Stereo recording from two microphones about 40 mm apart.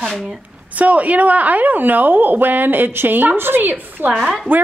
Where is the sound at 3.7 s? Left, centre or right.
Right.